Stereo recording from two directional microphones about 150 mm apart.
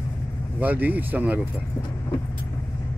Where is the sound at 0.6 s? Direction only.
10° right (ahead or behind).